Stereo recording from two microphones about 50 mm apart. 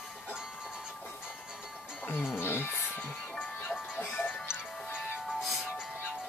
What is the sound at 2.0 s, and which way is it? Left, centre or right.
Music, left.